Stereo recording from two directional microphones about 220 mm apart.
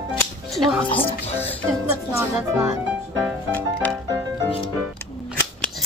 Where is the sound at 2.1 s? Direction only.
15° right (ahead or behind).